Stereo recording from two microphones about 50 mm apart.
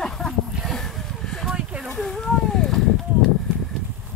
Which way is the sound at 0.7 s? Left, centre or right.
Centre.